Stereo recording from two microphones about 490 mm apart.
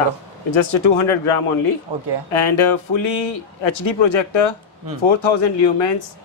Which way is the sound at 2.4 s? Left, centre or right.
Left.